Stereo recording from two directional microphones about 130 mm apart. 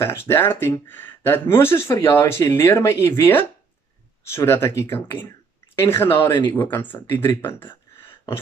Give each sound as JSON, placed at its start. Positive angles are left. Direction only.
{"t": 0.0, "sound": "speech", "side_deg": 20}